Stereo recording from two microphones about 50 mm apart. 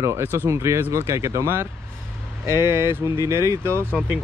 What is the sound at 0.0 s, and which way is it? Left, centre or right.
Speech, right.